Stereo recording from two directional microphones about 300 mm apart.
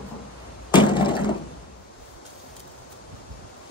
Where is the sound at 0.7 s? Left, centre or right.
Centre.